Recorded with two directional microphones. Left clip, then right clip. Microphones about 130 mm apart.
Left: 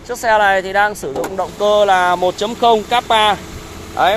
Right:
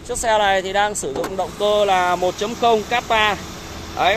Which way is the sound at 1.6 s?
40° left (ahead or behind).